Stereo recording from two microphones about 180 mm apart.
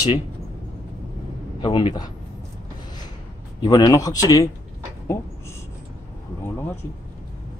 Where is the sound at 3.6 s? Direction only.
20° left (ahead or behind).